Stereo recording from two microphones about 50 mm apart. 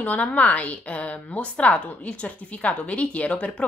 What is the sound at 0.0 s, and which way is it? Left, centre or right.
A woman's voice, left.